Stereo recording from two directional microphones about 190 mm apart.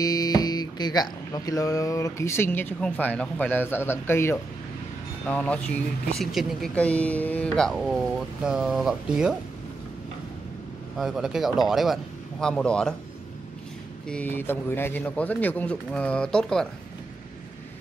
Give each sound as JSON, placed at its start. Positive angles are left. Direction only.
{"t": 0.0, "sound": "speech", "side_deg": 20}
{"t": 11.0, "sound": "speech", "side_deg": 0}
{"t": 14.0, "sound": "speech", "side_deg": 5}